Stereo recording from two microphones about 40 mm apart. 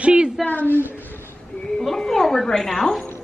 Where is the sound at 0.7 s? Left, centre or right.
Right.